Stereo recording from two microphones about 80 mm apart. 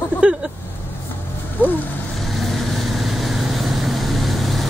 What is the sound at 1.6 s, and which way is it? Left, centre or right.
Speech, left.